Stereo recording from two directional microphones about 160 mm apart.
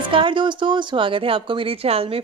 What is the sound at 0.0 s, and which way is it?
A woman's voice, 30° right (ahead or behind).